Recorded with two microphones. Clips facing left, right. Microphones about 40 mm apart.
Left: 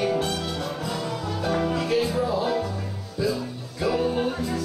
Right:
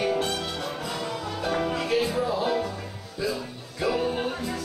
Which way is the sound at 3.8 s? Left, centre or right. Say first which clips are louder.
Left 2 dB; right.